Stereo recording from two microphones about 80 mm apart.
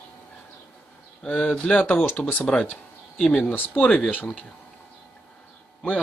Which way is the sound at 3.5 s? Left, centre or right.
Centre.